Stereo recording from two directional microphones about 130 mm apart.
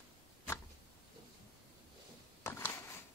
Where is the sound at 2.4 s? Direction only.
20° left (ahead or behind).